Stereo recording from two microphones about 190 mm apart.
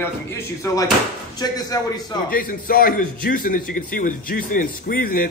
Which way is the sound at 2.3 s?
45° left (ahead or behind).